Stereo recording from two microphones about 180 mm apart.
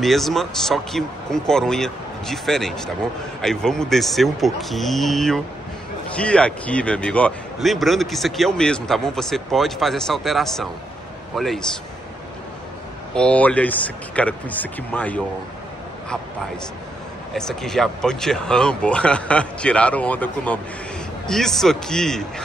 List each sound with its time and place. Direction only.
0.0 s speech: centre (ahead or behind)
13.1 s speech: 5° left (ahead or behind)
17.3 s speech: centre (ahead or behind)